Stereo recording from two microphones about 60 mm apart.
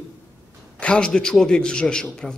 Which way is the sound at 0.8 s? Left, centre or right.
Centre.